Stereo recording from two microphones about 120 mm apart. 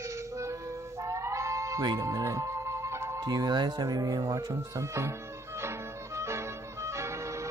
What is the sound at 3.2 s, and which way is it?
Speech, 35° right (ahead or behind).